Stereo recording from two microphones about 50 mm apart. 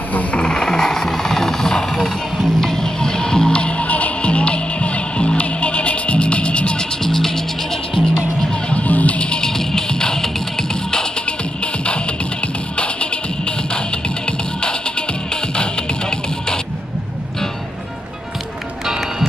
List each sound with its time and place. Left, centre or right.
0.1 s jackhammer: left
7.0 s music: centre
8.7 s music: left
18.9 s music: centre